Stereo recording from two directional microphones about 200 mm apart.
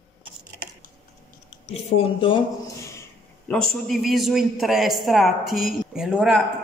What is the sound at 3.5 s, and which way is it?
A man's voice, centre (ahead or behind).